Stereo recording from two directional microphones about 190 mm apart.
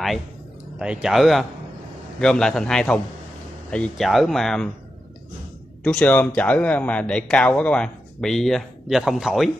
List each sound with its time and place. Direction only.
0.7 s a man's voice: 5° right (ahead or behind)
5.9 s a man's voice: 5° left (ahead or behind)